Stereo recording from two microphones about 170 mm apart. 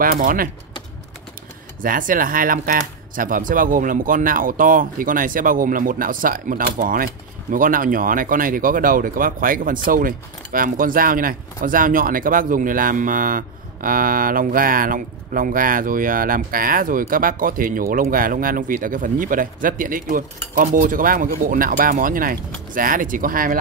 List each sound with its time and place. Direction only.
0.0 s speech: 55° right (ahead or behind)
1.8 s speech: 55° right (ahead or behind)